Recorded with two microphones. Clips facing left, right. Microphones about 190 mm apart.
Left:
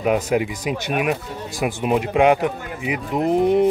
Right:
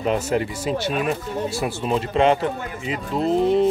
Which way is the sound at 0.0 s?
10° left (ahead or behind).